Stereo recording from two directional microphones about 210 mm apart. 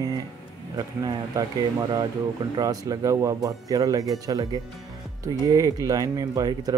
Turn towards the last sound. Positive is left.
turn(degrees=-15)  # may be behind; listen again after turning